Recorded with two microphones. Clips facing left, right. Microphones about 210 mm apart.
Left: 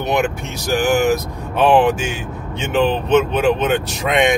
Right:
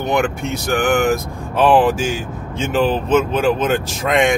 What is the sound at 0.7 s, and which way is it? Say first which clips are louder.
Speech: left 1 dB; centre (ahead or behind).